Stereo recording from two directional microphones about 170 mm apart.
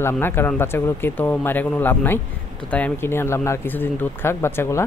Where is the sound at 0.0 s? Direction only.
15° left (ahead or behind).